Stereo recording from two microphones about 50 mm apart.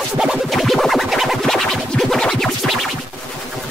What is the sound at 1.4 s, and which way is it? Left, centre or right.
Music, centre.